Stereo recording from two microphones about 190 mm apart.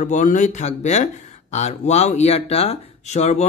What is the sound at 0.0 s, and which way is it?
Speech, 40° left (ahead or behind).